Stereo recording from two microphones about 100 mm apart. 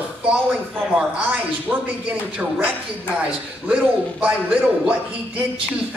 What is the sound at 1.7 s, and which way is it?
A man's voice, 15° right (ahead or behind).